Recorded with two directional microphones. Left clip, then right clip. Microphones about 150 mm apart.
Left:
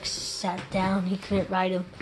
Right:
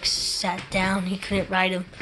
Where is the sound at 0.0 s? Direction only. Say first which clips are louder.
Right 6 dB; 5° right (ahead or behind).